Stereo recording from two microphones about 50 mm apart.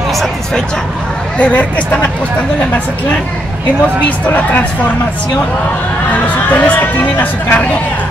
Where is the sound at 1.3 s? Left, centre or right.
Left.